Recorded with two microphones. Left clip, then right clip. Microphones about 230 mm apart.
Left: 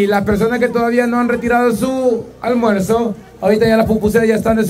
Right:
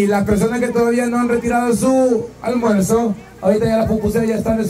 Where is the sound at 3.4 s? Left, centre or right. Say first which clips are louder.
Left 3 dB; left.